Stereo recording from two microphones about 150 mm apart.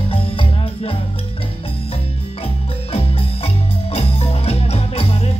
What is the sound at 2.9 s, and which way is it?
Music, 40° left (ahead or behind).